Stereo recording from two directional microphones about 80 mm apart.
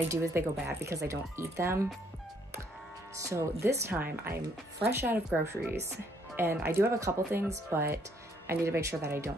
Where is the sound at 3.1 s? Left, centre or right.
Right.